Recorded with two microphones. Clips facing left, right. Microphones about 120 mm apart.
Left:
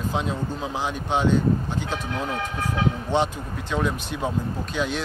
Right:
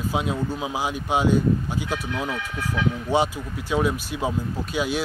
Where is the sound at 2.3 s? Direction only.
45° left (ahead or behind).